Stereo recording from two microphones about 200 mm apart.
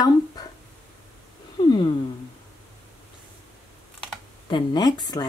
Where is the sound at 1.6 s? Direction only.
25° left (ahead or behind).